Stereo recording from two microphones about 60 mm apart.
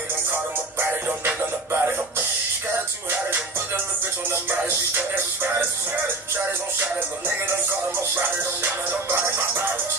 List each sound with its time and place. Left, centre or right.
0.3 s music: right
4.3 s music: right
9.1 s music: right